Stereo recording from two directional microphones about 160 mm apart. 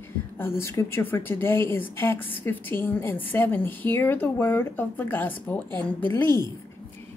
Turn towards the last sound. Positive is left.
turn(degrees=15)  # may be behind; listen again after turning